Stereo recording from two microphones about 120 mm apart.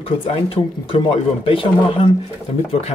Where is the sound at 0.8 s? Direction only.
50° left (ahead or behind).